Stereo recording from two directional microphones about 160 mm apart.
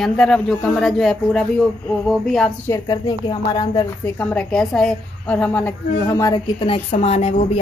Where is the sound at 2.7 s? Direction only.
25° left (ahead or behind).